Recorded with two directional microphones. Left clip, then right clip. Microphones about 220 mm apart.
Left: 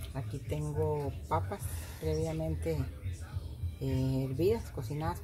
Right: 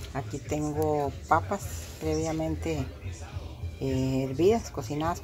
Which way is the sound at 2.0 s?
15° right (ahead or behind).